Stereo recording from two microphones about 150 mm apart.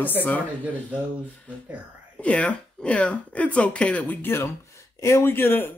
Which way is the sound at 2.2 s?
10° left (ahead or behind).